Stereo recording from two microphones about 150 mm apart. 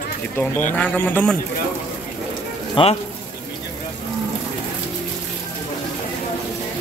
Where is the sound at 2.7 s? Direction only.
40° left (ahead or behind).